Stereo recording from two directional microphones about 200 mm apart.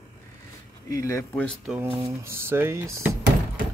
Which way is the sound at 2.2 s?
10° right (ahead or behind).